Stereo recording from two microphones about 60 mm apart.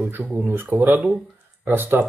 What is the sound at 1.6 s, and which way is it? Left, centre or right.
Speech, right.